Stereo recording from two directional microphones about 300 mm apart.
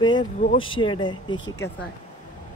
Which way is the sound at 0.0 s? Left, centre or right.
Centre.